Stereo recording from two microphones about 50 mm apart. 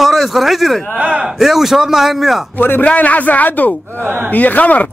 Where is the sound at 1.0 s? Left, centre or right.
Right.